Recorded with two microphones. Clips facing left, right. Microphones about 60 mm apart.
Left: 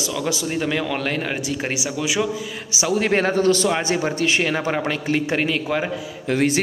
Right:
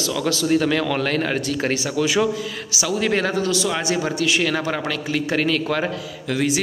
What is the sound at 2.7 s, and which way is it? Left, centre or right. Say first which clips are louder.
A man's voice: left 2 dB; left.